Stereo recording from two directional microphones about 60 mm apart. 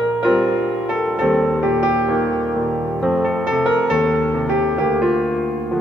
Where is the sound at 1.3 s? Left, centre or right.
Centre.